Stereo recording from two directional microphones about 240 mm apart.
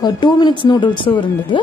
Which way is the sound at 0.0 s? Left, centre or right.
Centre.